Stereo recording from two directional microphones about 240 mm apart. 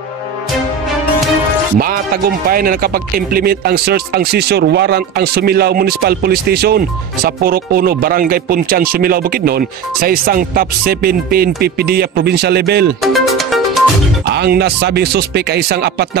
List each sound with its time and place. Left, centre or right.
1.8 s speech: right
13.0 s music: centre
14.3 s speech: right